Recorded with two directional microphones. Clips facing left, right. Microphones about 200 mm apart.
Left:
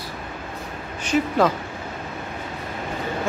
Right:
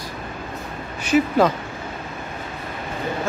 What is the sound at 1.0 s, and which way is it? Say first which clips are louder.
Speech: right 3 dB; 5° right (ahead or behind).